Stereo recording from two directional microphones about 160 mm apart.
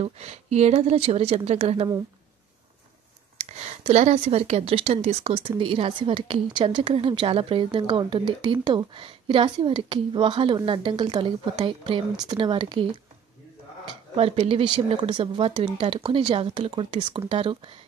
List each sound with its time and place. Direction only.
0.0 s a woman's voice: 40° right (ahead or behind)
3.3 s a woman's voice: 45° right (ahead or behind)
14.1 s a woman's voice: 35° right (ahead or behind)